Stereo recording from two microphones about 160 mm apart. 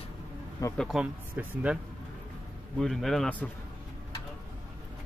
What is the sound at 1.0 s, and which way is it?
Speech, 10° right (ahead or behind).